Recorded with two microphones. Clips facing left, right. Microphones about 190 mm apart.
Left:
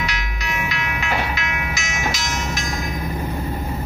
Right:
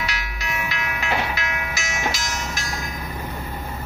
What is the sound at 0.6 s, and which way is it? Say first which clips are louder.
Train: left 3 dB; 40° right (ahead or behind).